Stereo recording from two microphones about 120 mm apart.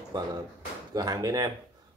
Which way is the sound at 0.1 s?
35° right (ahead or behind).